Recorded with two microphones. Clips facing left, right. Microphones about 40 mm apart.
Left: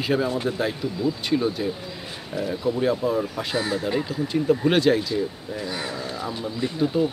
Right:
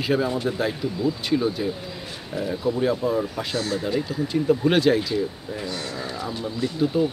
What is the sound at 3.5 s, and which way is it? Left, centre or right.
Speech, centre.